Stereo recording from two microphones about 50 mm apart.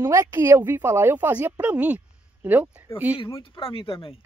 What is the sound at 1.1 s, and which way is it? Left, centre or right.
Speech, right.